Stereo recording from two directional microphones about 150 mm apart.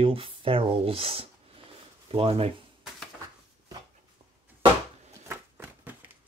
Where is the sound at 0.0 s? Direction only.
35° right (ahead or behind).